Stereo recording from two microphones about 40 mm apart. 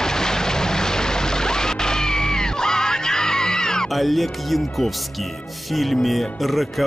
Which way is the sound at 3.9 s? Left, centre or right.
Centre.